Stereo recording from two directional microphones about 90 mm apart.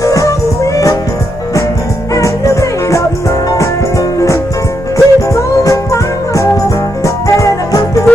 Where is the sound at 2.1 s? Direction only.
35° left (ahead or behind).